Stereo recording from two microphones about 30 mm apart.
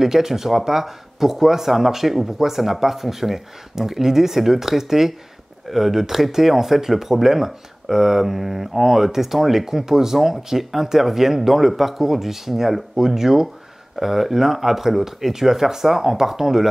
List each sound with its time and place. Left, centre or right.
0.0 s speech: centre